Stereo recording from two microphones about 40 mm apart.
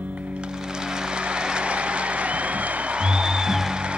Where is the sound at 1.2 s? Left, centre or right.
Right.